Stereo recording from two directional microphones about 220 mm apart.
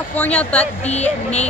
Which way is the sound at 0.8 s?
30° left (ahead or behind).